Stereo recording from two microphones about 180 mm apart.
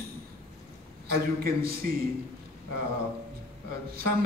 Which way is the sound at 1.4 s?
55° right (ahead or behind).